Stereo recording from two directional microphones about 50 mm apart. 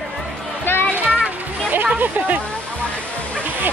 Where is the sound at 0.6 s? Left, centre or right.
Left.